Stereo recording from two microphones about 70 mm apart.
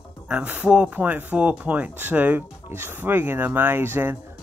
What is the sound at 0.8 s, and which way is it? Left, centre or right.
Speech, right.